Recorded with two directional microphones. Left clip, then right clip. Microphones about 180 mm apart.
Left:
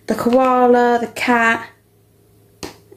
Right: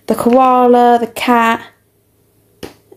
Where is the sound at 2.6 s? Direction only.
5° right (ahead or behind).